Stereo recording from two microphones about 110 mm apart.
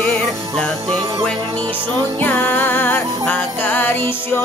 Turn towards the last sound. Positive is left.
turn(degrees=15)  # may be behind; listen again after turning